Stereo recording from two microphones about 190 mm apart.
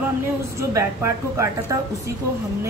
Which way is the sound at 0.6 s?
15° right (ahead or behind).